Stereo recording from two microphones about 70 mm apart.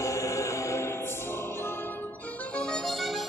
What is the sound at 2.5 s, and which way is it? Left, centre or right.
Harmonica, centre.